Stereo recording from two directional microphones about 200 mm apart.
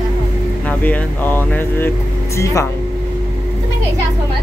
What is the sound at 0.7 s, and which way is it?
Speech, 10° left (ahead or behind).